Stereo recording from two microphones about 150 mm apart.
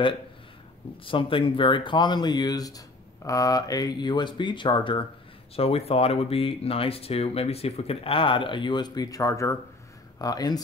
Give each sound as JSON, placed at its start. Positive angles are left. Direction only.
{"t": 1.0, "sound": "speech", "side_deg": 35}